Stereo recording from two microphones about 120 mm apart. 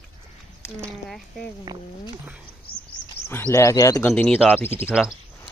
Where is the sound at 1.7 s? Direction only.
30° right (ahead or behind).